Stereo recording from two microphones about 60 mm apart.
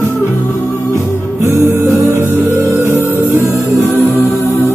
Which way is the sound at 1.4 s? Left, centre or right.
Right.